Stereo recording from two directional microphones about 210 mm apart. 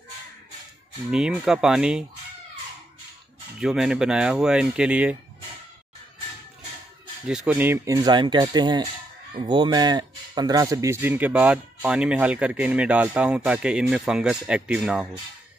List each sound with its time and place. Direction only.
1.1 s speech: 5° right (ahead or behind)
3.5 s speech: centre (ahead or behind)
7.2 s speech: 5° right (ahead or behind)